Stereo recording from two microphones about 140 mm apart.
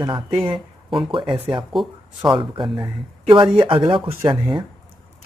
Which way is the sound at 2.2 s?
35° right (ahead or behind).